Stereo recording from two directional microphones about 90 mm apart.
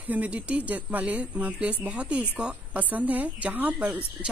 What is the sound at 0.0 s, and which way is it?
Speech, 20° right (ahead or behind).